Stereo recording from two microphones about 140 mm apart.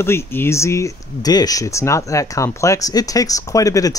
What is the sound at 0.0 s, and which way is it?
Speech, 15° left (ahead or behind).